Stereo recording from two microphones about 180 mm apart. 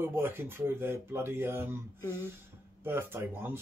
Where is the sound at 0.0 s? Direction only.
10° right (ahead or behind).